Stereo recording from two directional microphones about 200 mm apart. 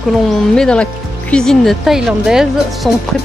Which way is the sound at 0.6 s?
5° left (ahead or behind).